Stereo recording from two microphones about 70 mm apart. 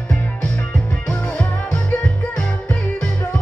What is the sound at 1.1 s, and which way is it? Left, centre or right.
Music, centre.